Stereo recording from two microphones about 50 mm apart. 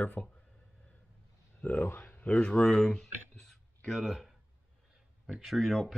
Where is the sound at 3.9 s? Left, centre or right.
Centre.